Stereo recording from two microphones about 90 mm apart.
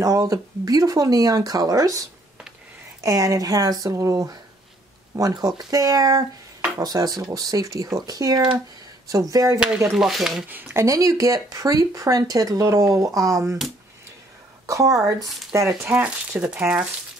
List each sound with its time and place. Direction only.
0.0 s speech: 40° right (ahead or behind)
9.9 s speech: 5° right (ahead or behind)
10.5 s speech: 25° right (ahead or behind)
14.7 s speech: 35° right (ahead or behind)
16.0 s speech: 20° right (ahead or behind)